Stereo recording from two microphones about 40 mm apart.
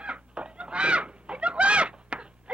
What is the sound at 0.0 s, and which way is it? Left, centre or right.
Goose, right.